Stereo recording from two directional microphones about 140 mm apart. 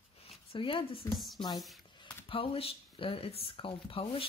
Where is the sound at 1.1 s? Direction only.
Centre (ahead or behind).